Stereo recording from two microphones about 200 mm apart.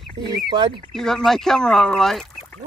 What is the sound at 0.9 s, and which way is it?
Speech, centre (ahead or behind).